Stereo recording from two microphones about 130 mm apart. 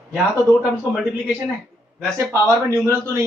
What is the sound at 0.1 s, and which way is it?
Speech, 5° right (ahead or behind).